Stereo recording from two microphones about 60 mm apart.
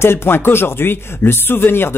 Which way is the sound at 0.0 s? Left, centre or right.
Left.